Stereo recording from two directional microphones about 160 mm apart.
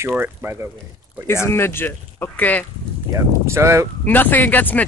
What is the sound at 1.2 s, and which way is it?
Speech, 15° left (ahead or behind).